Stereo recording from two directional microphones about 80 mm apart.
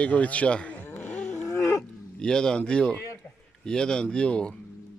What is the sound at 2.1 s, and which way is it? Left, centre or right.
Speech, centre.